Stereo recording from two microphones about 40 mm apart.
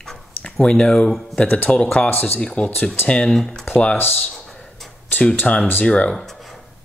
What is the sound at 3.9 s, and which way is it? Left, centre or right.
Speech, left.